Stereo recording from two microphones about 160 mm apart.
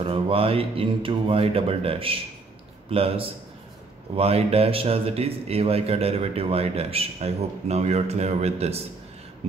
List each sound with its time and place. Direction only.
0.0 s a man's voice: 35° right (ahead or behind)